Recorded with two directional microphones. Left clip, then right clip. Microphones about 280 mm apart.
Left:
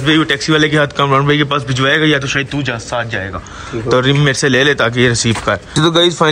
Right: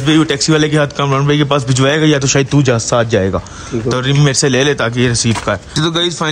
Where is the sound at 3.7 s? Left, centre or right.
Centre.